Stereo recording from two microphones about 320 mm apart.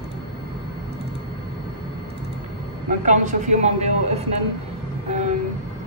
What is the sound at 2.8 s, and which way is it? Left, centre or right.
Speech, right.